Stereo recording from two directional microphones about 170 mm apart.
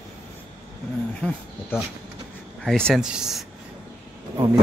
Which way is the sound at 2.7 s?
5° left (ahead or behind).